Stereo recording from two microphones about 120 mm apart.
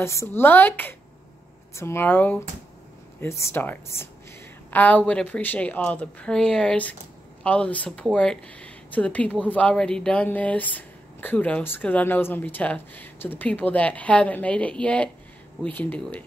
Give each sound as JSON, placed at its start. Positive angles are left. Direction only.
{"t": 0.0, "sound": "speech", "side_deg": 25}